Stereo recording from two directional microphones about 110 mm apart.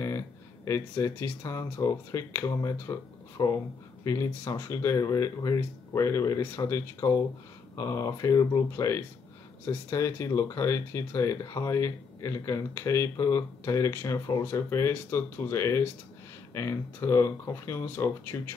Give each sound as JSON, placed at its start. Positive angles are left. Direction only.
{"t": 0.7, "sound": "speech", "side_deg": 25}